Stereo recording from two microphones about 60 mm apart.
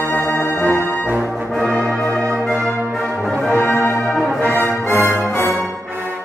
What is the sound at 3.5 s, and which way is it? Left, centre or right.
Music, left.